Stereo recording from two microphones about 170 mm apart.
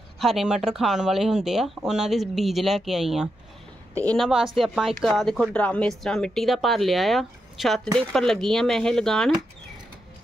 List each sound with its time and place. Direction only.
0.2 s a woman's voice: centre (ahead or behind)